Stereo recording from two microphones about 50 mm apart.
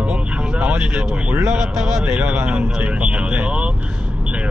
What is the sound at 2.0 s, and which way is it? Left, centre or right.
Speech, right.